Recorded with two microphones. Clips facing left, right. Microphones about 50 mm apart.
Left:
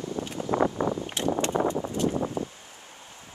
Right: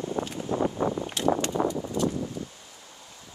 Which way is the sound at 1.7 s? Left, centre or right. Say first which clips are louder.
Left 1 dB; left.